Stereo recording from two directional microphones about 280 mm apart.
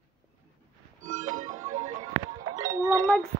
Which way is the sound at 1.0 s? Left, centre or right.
Right.